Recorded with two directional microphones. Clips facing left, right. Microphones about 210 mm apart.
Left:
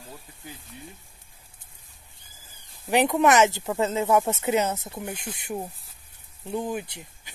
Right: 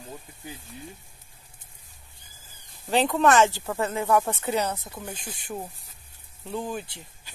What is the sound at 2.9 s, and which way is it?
Speech, 15° left (ahead or behind).